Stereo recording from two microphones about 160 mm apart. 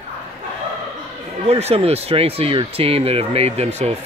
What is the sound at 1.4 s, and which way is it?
Speech, 40° right (ahead or behind).